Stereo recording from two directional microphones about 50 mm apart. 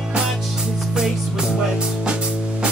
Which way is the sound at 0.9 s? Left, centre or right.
Centre.